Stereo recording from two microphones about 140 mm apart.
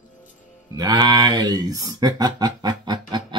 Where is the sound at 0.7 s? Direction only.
30° right (ahead or behind).